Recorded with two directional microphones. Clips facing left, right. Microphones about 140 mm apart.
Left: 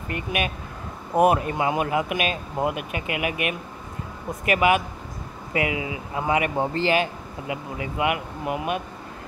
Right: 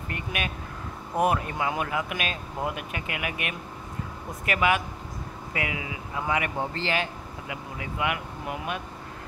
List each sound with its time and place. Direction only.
0.1 s speech: 15° left (ahead or behind)